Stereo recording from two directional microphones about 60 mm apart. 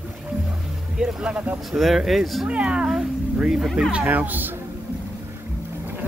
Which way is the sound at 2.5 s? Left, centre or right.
Centre.